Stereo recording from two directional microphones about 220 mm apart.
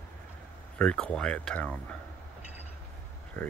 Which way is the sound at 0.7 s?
5° left (ahead or behind).